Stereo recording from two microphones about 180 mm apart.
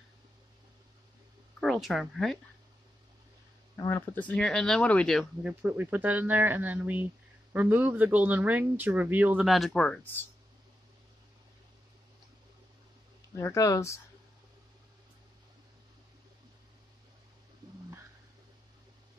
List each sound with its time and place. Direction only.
1.6 s speech: centre (ahead or behind)
3.7 s speech: 15° left (ahead or behind); by 5.5 s centre (ahead or behind)
5.5 s speech: 10° right (ahead or behind); by 10.2 s 5° left (ahead or behind)
13.4 s speech: 15° left (ahead or behind)